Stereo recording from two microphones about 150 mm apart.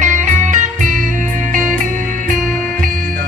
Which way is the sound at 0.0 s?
55° right (ahead or behind).